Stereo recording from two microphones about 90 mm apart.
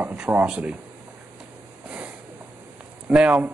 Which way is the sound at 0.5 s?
15° right (ahead or behind).